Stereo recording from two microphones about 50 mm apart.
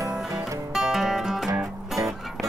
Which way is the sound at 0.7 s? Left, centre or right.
Centre.